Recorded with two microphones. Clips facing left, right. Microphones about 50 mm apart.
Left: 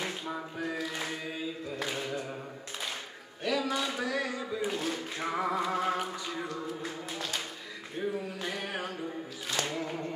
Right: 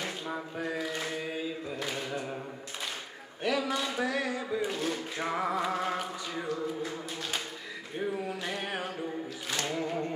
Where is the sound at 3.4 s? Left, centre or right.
Right.